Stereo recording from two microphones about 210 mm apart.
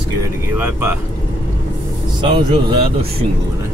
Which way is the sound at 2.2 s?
25° right (ahead or behind).